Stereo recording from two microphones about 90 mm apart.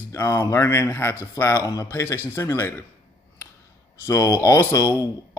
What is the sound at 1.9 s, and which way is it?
Speech, 30° left (ahead or behind).